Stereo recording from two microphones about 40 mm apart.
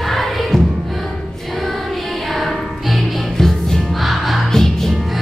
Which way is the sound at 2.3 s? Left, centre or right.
Centre.